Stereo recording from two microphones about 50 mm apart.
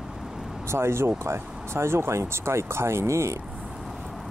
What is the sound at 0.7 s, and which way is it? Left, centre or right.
Speech, right.